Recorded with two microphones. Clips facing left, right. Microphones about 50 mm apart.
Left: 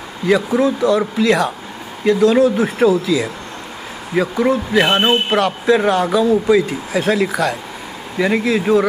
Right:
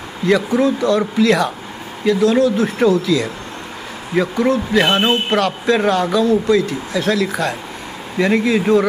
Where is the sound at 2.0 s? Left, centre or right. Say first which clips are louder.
Left 2 dB; left.